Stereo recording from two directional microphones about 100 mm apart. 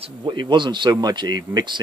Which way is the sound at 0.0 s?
50° right (ahead or behind).